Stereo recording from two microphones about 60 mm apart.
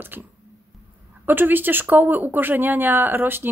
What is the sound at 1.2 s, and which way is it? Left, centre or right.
Speech, right.